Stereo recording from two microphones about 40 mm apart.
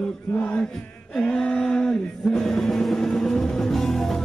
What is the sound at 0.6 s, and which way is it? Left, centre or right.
A capella, centre.